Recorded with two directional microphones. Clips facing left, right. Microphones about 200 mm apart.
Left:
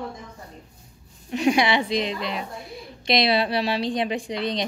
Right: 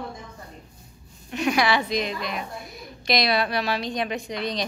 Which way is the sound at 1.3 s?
30° left (ahead or behind).